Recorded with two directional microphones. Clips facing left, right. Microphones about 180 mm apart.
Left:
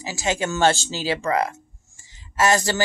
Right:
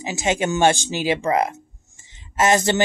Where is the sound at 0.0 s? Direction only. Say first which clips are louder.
Right 3 dB; 20° right (ahead or behind).